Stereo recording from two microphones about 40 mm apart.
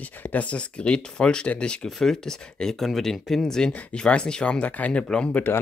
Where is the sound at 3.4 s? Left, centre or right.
Centre.